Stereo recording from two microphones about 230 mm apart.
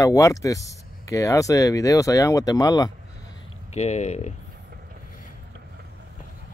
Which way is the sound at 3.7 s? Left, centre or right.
Left.